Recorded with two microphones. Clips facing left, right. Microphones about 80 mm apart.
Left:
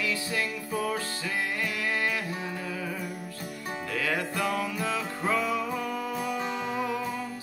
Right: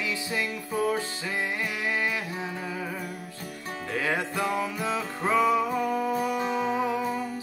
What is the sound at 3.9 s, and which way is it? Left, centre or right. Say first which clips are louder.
Music: right 2 dB; right.